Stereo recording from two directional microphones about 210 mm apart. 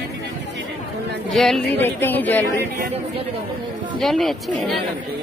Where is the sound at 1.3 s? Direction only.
Centre (ahead or behind).